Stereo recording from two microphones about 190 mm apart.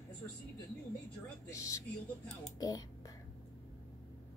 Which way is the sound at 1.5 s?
15° left (ahead or behind).